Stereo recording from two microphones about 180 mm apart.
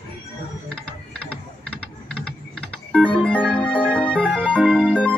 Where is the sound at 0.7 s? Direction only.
5° left (ahead or behind).